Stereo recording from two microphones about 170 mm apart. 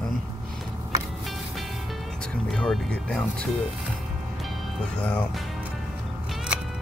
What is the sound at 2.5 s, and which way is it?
Speech, 5° left (ahead or behind).